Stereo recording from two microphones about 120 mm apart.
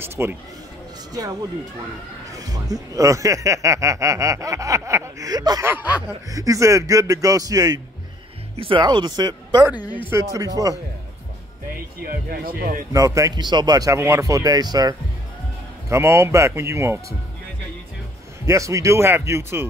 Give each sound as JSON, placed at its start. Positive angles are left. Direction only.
{"t": 0.0, "sound": "speech", "side_deg": -20}
{"t": 2.3, "sound": "speech", "side_deg": -30}
{"t": 5.7, "sound": "speech", "side_deg": -15}
{"t": 6.3, "sound": "speech", "side_deg": -30}
{"t": 8.5, "sound": "speech", "side_deg": -40}
{"t": 9.8, "sound": "speech", "side_deg": 40}
{"t": 10.3, "sound": "speech", "side_deg": -30}
{"t": 12.9, "sound": "speech", "side_deg": -30}
{"t": 18.4, "sound": "speech", "side_deg": -25}